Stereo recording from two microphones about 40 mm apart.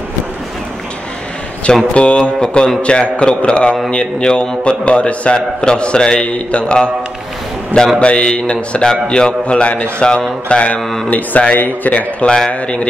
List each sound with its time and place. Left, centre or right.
2.0 s a man's voice: left
2.4 s a man's voice: centre
8.0 s a man's voice: left
11.1 s speech: left
11.5 s a man's voice: left
11.9 s a man's voice: left
12.4 s a man's voice: left